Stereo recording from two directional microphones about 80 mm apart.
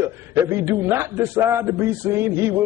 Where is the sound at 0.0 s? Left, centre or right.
Right.